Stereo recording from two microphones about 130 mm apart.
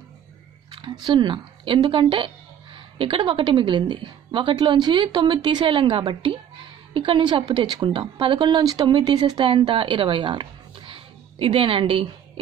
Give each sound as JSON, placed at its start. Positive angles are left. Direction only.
{"t": 0.7, "sound": "a woman's voice", "side_deg": -40}